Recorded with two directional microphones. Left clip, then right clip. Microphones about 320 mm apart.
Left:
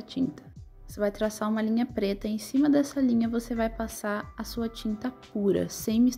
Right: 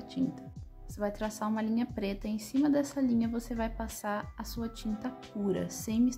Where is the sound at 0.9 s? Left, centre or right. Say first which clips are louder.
Left 7 dB; centre.